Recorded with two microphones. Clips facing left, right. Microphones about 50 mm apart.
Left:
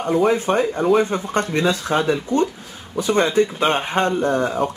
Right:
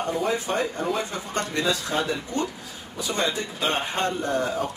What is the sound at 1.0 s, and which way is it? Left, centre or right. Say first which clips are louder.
Speech: left 8 dB; left.